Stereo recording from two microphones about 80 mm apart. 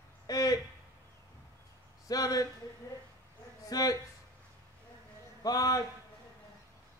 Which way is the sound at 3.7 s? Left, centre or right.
Left.